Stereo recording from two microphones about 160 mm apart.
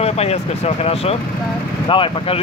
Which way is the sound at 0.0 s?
40° left (ahead or behind).